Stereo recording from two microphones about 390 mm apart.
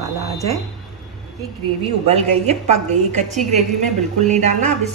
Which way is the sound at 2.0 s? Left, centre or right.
Centre.